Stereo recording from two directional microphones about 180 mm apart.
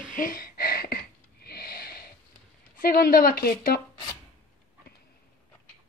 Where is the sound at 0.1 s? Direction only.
50° left (ahead or behind).